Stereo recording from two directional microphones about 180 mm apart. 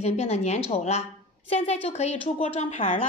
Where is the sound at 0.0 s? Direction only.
35° left (ahead or behind).